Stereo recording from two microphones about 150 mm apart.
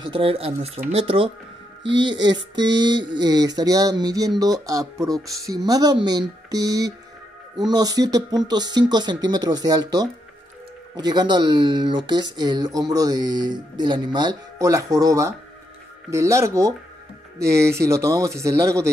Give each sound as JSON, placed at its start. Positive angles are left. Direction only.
{"t": 0.0, "sound": "speech", "side_deg": -35}